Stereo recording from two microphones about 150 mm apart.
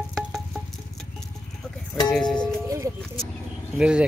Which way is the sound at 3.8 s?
5° right (ahead or behind).